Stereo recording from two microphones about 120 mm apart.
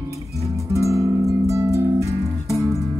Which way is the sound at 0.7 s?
25° right (ahead or behind).